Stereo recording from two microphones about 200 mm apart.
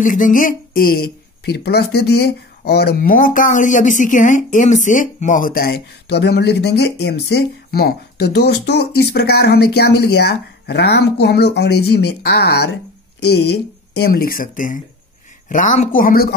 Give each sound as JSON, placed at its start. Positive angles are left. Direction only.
{"t": 0.0, "sound": "speech", "side_deg": 40}